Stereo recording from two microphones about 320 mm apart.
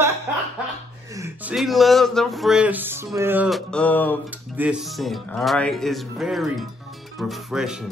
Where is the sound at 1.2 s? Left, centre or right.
Centre.